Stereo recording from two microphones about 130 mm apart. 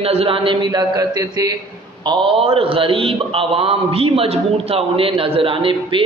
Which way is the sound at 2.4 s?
45° right (ahead or behind).